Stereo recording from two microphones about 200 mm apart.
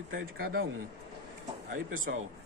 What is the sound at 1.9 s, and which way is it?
Speech, 80° right.